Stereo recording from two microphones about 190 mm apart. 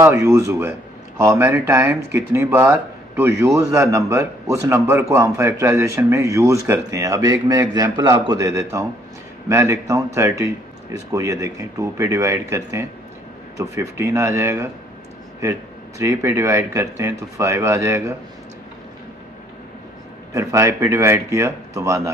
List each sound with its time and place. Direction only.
0.0 s a man's voice: 15° right (ahead or behind)
16.0 s speech: 15° right (ahead or behind)
20.3 s speech: 15° right (ahead or behind)